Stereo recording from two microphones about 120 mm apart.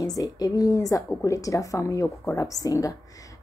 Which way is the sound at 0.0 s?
30° left (ahead or behind).